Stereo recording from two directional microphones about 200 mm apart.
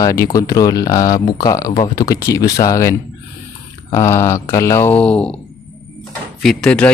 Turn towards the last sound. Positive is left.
turn(degrees=5)  # may be behind; listen again after turning